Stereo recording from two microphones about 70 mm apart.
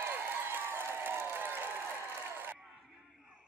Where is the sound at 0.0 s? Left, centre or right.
Right.